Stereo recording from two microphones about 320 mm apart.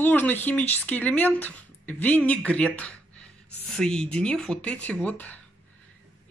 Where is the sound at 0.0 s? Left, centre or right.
Centre.